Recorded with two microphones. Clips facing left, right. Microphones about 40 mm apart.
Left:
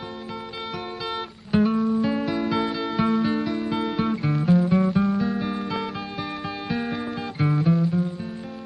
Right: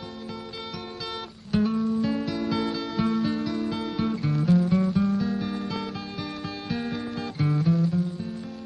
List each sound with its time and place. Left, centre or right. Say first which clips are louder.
1.5 s music: left 3 dB; left